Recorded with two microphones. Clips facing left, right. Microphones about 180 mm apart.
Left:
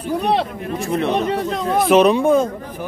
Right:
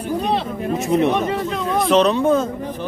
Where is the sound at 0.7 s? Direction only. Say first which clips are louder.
Right 3 dB; 20° right (ahead or behind).